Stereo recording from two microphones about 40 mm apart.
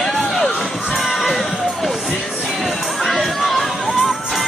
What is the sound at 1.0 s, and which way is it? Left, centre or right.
Music, centre.